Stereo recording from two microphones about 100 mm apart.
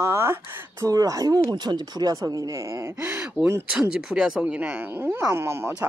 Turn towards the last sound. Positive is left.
turn(degrees=-25)  # may be behind; listen again after turning